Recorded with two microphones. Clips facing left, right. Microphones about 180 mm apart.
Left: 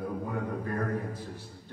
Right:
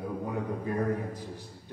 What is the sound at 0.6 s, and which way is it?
Speech, 15° right (ahead or behind).